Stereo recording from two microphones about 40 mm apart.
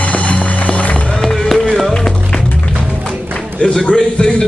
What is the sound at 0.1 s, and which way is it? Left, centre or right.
Music, left.